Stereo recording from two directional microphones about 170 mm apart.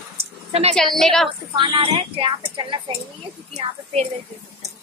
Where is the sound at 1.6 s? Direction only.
30° right (ahead or behind).